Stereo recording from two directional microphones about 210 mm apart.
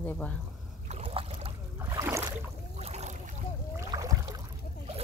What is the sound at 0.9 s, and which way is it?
Boat, 30° right (ahead or behind).